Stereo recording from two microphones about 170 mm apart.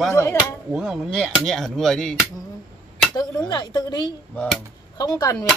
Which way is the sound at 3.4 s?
25° left (ahead or behind).